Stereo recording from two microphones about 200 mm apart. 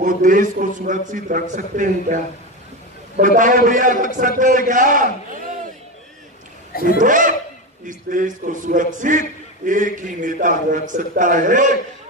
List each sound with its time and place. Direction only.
0.0 s a man's voice: 40° right (ahead or behind)
6.7 s speech: 45° left (ahead or behind)
7.0 s a man's voice: 40° right (ahead or behind)